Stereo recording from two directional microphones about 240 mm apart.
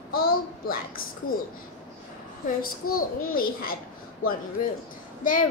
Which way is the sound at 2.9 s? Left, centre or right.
Left.